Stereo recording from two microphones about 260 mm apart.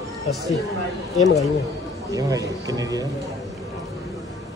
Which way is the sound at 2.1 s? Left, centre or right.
Centre.